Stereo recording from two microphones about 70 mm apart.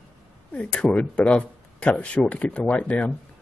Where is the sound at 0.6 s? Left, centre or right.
Centre.